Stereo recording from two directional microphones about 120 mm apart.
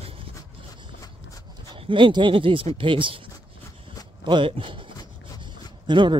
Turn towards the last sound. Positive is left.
turn(degrees=-40)  # may be behind; listen again after turning